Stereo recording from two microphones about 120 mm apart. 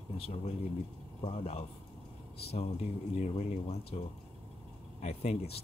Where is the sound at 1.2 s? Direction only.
60° left (ahead or behind).